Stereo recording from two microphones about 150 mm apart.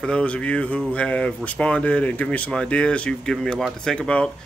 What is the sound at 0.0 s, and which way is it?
Speech, 5° left (ahead or behind).